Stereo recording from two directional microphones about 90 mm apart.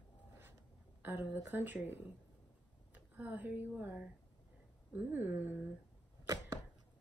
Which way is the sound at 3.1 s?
15° right (ahead or behind).